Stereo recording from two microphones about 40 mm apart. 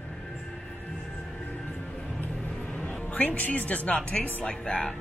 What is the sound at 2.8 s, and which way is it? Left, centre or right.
A woman's voice, left.